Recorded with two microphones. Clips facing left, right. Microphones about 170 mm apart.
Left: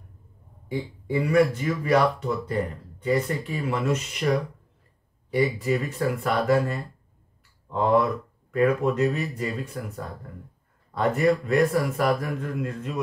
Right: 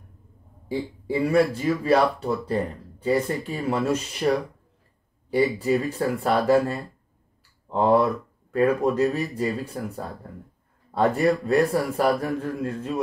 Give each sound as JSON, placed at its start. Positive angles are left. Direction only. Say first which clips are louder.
{"t": 0.7, "sound": "speech", "louder": "right 2 dB", "side_deg": -30}
{"t": 5.3, "sound": "speech", "louder": "right 2 dB", "side_deg": -30}
{"t": 11.0, "sound": "speech", "louder": "right 1 dB", "side_deg": -30}